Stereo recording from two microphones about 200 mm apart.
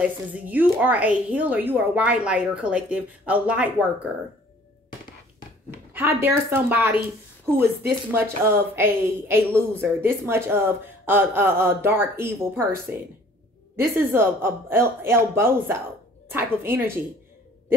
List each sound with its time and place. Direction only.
0.0 s a woman's voice: 10° right (ahead or behind)
5.7 s a woman's voice: 10° right (ahead or behind)
8.1 s a woman's voice: 10° right (ahead or behind)